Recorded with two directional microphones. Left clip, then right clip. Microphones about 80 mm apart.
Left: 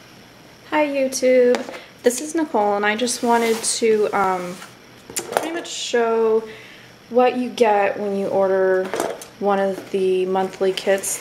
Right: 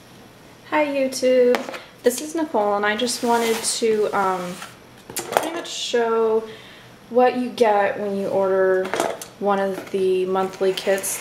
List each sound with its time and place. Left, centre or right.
0.7 s a woman's voice: left
5.4 s a sound: left
7.2 s a woman's voice: left
8.8 s speech: centre
9.4 s speech: left